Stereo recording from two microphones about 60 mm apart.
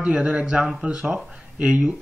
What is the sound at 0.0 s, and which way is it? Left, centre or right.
Speech, centre.